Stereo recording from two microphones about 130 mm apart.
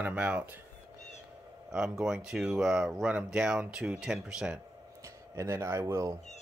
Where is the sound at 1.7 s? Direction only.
5° right (ahead or behind).